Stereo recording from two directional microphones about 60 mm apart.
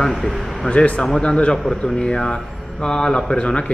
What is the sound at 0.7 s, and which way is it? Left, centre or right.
Speech, centre.